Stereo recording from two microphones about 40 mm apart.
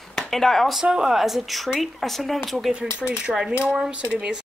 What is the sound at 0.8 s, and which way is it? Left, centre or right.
Speech, centre.